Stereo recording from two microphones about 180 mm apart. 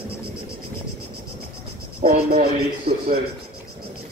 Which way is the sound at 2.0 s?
40° right (ahead or behind).